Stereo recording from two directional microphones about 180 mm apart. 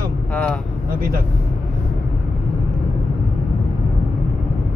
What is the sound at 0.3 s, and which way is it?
Speech, 5° left (ahead or behind).